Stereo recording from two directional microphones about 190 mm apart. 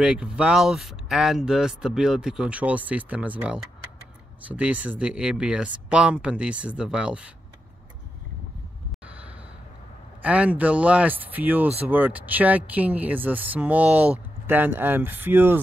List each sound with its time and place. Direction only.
0.0 s speech: 5° right (ahead or behind)
10.2 s speech: 5° right (ahead or behind)